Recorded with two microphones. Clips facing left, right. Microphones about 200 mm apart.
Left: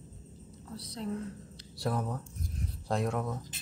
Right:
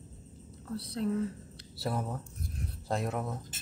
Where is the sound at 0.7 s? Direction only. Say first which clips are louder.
Right 6 dB; 60° right (ahead or behind).